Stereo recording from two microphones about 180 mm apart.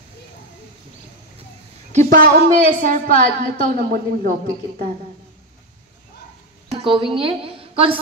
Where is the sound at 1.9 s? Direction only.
45° right (ahead or behind).